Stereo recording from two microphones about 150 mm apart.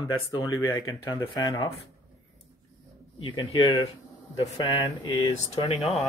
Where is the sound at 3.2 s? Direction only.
25° left (ahead or behind).